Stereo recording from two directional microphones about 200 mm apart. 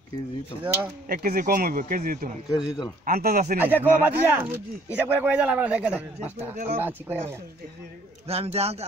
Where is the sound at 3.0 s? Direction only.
50° right (ahead or behind).